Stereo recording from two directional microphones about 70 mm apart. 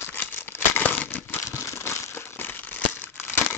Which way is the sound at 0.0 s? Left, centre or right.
Left.